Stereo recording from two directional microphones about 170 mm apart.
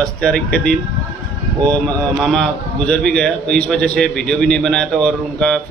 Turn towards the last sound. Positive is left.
turn(degrees=5)  # may be behind; listen again after turning